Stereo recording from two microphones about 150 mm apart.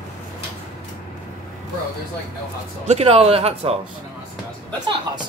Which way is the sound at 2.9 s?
40° right (ahead or behind).